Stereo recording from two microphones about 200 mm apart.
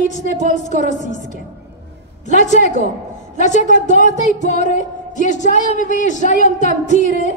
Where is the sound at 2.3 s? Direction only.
35° left (ahead or behind).